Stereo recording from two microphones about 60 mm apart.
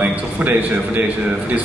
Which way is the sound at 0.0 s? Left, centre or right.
Right.